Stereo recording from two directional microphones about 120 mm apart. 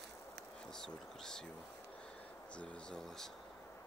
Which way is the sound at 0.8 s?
5° left (ahead or behind).